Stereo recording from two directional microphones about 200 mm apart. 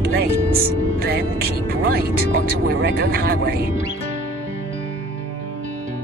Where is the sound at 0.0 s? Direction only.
50° right (ahead or behind).